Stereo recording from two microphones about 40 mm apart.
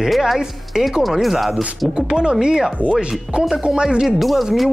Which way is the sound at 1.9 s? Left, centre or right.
Centre.